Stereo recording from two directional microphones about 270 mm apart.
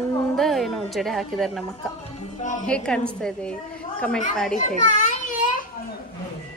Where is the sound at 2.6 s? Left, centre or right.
Centre.